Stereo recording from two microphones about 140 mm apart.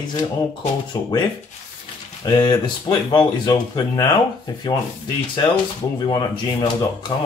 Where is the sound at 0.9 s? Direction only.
30° left (ahead or behind).